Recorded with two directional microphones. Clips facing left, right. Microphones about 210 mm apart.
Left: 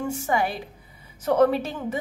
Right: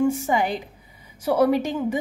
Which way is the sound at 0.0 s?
20° right (ahead or behind).